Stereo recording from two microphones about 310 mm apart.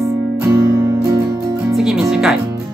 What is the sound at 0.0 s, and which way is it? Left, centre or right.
Music, centre.